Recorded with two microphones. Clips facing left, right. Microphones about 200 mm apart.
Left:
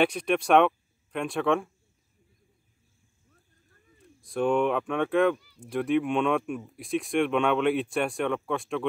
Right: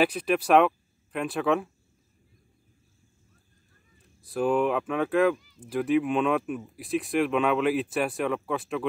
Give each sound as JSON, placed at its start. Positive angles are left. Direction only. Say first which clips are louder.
{"t": 0.0, "sound": "speech", "louder": "even", "side_deg": 0}
{"t": 4.2, "sound": "speech", "louder": "even", "side_deg": 0}